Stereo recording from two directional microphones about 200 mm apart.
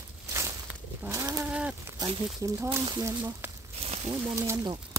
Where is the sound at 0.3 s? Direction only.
15° right (ahead or behind).